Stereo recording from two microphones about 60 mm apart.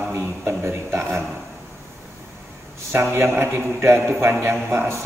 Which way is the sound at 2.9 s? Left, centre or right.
Right.